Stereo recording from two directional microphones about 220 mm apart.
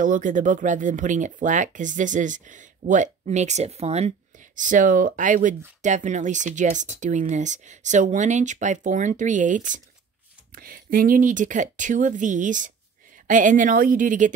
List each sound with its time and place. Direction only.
0.0 s speech: 35° right (ahead or behind)